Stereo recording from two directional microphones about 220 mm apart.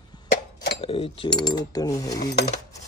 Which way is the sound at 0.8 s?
25° left (ahead or behind).